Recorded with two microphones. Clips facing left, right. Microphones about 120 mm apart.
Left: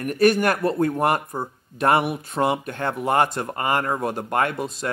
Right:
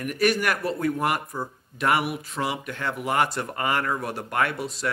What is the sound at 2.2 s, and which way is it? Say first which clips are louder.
Speech: left 6 dB; 50° left (ahead or behind).